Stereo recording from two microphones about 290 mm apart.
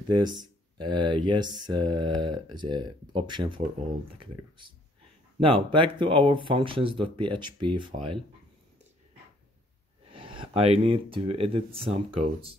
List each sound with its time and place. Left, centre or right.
0.1 s speech: centre
5.4 s speech: centre
10.1 s speech: centre